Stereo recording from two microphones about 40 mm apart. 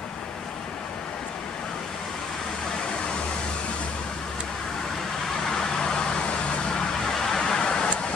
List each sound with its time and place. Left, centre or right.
5.5 s vehicle: centre